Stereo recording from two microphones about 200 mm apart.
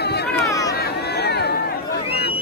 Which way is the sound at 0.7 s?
55° left (ahead or behind).